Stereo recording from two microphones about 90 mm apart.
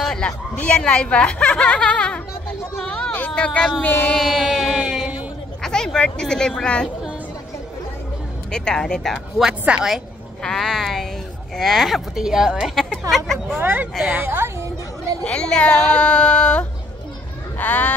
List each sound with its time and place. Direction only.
0.0 s speech: 10° left (ahead or behind)
4.2 s music: centre (ahead or behind)
5.6 s speech: 5° left (ahead or behind)
8.5 s speech: 10° left (ahead or behind)
9.4 s a woman's voice: 10° right (ahead or behind)
10.4 s speech: 5° left (ahead or behind)
13.6 s a woman's voice: 25° right (ahead or behind)
15.2 s speech: 10° left (ahead or behind)